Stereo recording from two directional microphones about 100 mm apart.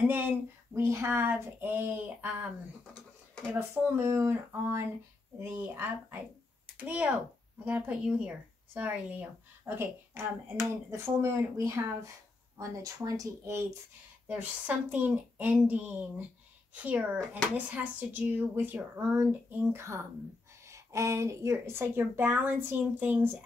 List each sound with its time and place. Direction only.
0.0 s speech: 20° right (ahead or behind)
3.5 s speech: 25° right (ahead or behind)
14.2 s speech: 15° right (ahead or behind)